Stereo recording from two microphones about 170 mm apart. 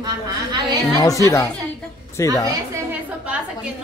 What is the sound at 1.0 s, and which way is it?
A woman's voice, 20° left (ahead or behind).